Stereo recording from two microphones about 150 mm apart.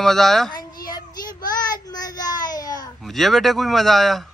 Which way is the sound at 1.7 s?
25° left (ahead or behind).